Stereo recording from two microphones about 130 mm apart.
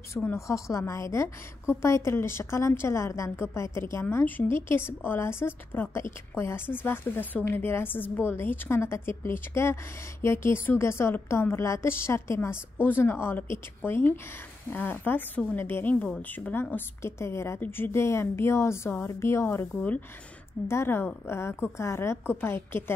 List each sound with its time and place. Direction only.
0.1 s a woman's voice: 20° left (ahead or behind)